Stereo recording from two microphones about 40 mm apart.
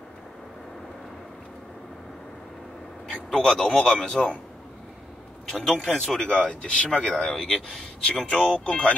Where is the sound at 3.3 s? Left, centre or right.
Centre.